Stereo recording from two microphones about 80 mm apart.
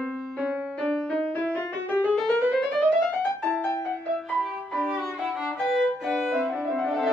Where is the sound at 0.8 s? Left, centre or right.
Centre.